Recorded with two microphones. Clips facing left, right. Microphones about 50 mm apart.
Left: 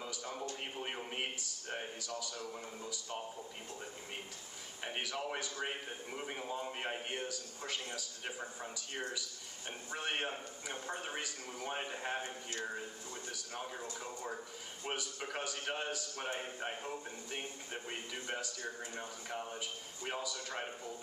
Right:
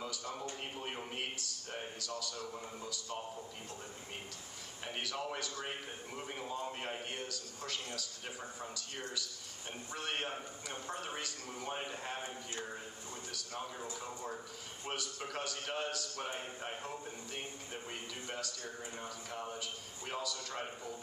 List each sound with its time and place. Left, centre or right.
0.0 s a sound: centre
0.7 s a man's voice: centre
4.8 s a man's voice: centre
14.9 s a man's voice: centre
20.1 s a man's voice: centre